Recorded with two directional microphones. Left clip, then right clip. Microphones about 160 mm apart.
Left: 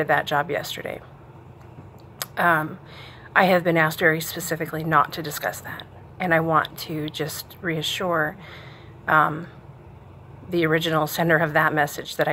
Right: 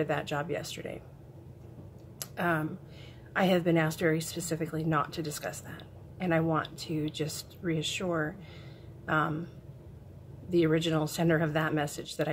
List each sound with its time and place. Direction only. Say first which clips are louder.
0.0 s speech: left 11 dB; 10° right (ahead or behind)
2.1 s speech: left 11 dB; 10° right (ahead or behind)
10.5 s speech: left 6 dB; 15° right (ahead or behind)